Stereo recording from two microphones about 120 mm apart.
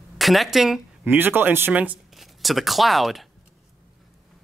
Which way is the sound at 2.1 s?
Centre (ahead or behind).